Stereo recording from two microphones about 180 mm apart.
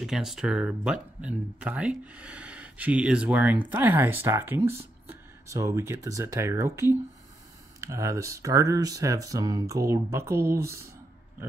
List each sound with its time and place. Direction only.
0.0 s speech: centre (ahead or behind)